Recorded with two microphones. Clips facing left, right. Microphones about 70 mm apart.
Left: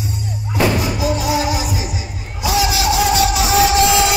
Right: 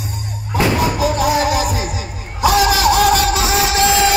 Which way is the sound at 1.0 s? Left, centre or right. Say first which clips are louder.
Right 3 dB; right.